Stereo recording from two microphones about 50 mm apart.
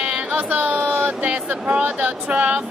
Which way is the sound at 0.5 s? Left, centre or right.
Right.